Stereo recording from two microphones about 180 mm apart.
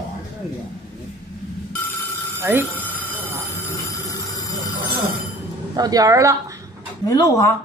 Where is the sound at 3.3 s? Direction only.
15° left (ahead or behind).